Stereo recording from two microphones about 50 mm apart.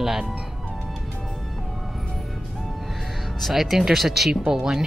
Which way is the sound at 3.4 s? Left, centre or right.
Centre.